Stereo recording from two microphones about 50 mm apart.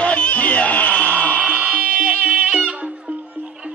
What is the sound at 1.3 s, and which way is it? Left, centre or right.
Music, right.